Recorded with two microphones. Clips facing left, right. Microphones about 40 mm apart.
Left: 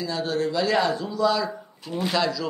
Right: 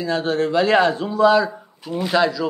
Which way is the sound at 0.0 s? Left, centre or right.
Right.